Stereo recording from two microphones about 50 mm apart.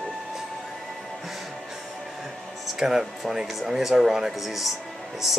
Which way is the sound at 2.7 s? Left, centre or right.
Centre.